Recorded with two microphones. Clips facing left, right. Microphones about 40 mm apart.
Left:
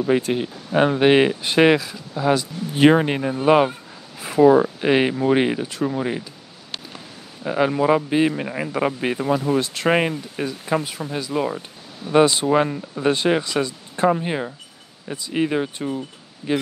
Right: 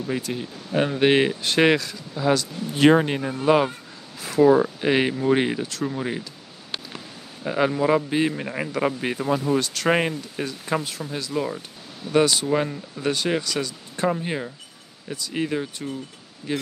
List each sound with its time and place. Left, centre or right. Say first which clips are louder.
0.0 s speech: left 8 dB; left
0.7 s speech: left 5 dB; centre
1.0 s speech: left 1 dB; centre
7.4 s speech: left 3 dB; centre